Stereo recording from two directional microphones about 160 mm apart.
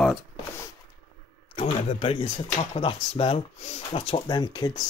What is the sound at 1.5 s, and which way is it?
A man's voice, 40° left (ahead or behind).